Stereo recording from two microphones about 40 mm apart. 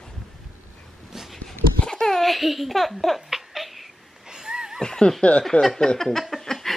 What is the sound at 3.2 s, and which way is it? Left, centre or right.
Laughter, centre.